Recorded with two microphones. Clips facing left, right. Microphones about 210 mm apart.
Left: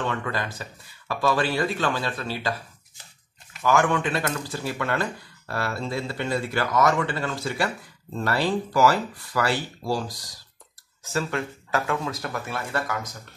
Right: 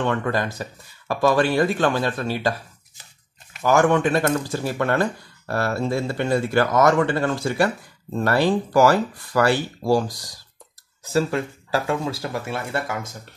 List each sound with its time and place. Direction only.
0.1 s speech: 45° right (ahead or behind)
3.6 s speech: 40° right (ahead or behind)
11.1 s speech: 35° right (ahead or behind)